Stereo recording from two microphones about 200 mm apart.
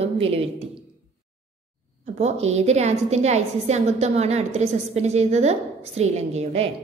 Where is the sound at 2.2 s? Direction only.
35° right (ahead or behind).